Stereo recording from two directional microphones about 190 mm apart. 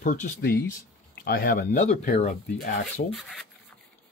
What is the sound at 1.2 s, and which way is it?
Speech, 55° left (ahead or behind).